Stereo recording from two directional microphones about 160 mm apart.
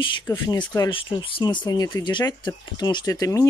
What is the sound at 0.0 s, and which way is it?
Speech, 30° left (ahead or behind).